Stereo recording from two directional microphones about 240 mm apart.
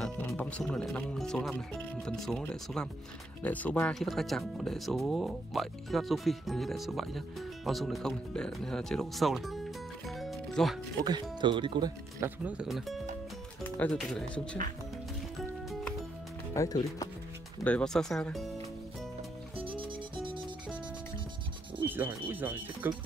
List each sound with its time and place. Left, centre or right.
0.0 s speech: centre
11.4 s speech: centre
12.4 s speech: centre
16.6 s speech: centre
19.5 s music: right
21.8 s speech: centre